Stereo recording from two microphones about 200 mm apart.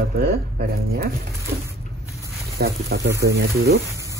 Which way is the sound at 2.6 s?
50° right (ahead or behind).